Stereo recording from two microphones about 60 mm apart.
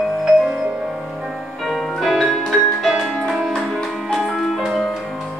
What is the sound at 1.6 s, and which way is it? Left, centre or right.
Music, centre.